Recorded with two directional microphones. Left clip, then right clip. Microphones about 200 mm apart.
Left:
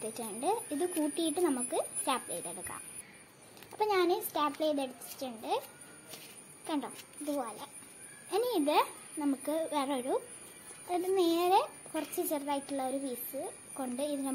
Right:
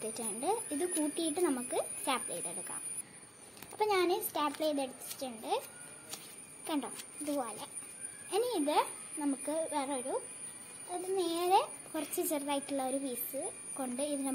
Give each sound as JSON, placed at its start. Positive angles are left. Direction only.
{"t": 0.0, "sound": "speech", "side_deg": 5}
{"t": 3.7, "sound": "a child's voice", "side_deg": 5}
{"t": 6.6, "sound": "a child's voice", "side_deg": 0}
{"t": 8.3, "sound": "speech", "side_deg": 10}
{"t": 11.1, "sound": "a child's voice", "side_deg": 10}